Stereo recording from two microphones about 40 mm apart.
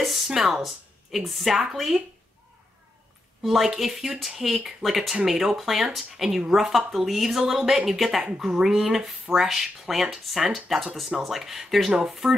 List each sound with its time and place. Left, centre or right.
0.0 s speech: centre
3.4 s speech: centre
11.1 s speech: centre